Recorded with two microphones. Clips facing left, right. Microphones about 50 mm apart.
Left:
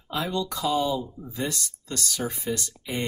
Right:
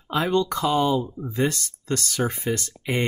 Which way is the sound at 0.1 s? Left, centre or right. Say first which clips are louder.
Right 6 dB; right.